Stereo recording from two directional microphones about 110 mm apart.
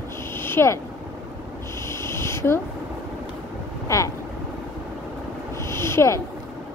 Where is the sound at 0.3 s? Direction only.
20° left (ahead or behind).